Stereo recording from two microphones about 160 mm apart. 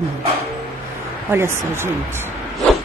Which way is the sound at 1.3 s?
15° right (ahead or behind).